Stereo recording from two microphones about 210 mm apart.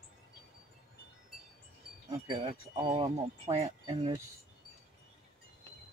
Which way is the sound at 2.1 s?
25° right (ahead or behind).